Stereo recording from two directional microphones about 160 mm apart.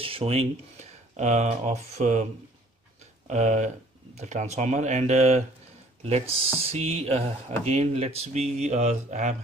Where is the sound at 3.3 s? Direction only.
45° right (ahead or behind).